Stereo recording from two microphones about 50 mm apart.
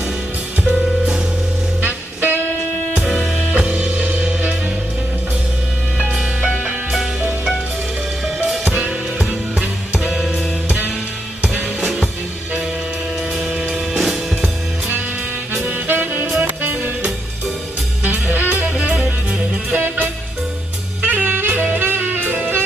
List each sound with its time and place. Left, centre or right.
1.8 s music: right
3.0 s music: centre
3.6 s music: right
6.4 s music: right
9.6 s music: centre
11.5 s music: centre
13.4 s music: centre
15.6 s saxophone: right
16.3 s music: right
18.0 s music: right